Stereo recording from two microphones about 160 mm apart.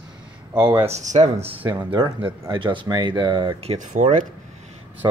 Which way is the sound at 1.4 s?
35° right (ahead or behind).